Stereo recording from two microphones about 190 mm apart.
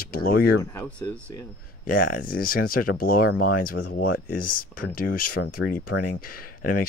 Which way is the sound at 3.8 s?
85° left.